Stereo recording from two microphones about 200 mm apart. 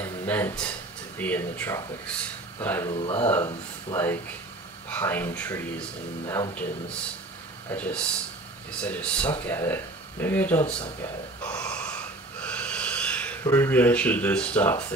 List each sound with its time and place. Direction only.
0.0 s speech: 10° left (ahead or behind)
2.9 s speech: 30° left (ahead or behind)
3.3 s speech: 15° left (ahead or behind)
7.7 s speech: 5° left (ahead or behind)
11.6 s gasp: 5° left (ahead or behind)
12.4 s a sound: 5° left (ahead or behind)